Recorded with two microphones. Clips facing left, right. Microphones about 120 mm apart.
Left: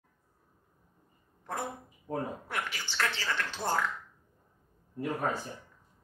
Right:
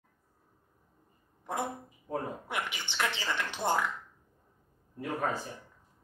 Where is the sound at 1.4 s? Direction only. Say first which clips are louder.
Right 2 dB; 15° right (ahead or behind).